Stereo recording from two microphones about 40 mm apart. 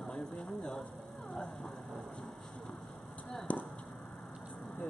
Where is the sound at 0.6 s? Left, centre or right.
Centre.